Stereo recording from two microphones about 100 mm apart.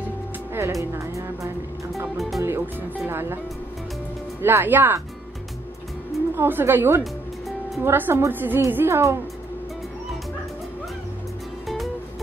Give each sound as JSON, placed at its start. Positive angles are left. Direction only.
{"t": 0.5, "sound": "music", "side_deg": -25}
{"t": 2.1, "sound": "music", "side_deg": 0}
{"t": 2.4, "sound": "music", "side_deg": -25}
{"t": 3.1, "sound": "a woman's voice", "side_deg": -25}
{"t": 4.4, "sound": "a woman's voice", "side_deg": -20}
{"t": 6.3, "sound": "a woman's voice", "side_deg": -25}
{"t": 7.0, "sound": "music", "side_deg": 0}
{"t": 7.8, "sound": "a woman's voice", "side_deg": -25}
{"t": 11.6, "sound": "music", "side_deg": 0}